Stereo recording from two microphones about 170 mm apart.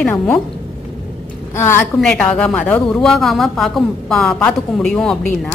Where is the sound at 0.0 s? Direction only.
15° left (ahead or behind).